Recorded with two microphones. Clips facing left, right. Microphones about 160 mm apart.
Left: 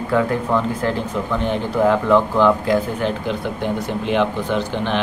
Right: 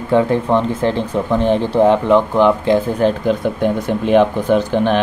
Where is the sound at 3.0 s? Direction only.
50° right (ahead or behind).